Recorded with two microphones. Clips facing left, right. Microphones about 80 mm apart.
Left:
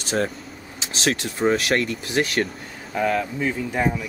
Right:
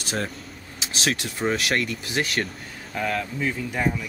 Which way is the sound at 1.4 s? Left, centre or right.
Centre.